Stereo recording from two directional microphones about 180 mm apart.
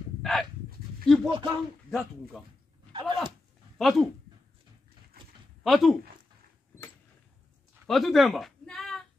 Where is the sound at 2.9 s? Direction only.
25° right (ahead or behind).